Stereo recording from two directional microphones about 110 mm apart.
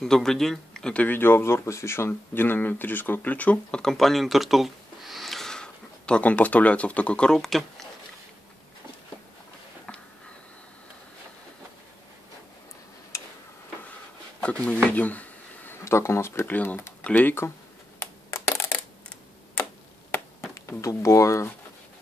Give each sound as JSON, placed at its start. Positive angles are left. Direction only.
{"t": 0.0, "sound": "speech", "side_deg": 5}
{"t": 13.1, "sound": "tick-tock", "side_deg": 25}
{"t": 14.4, "sound": "speech", "side_deg": 10}
{"t": 14.9, "sound": "a sound", "side_deg": 15}
{"t": 15.8, "sound": "speech", "side_deg": 25}
{"t": 18.3, "sound": "coin", "side_deg": 20}
{"t": 19.0, "sound": "computer keyboard", "side_deg": 10}
{"t": 20.5, "sound": "speech", "side_deg": 30}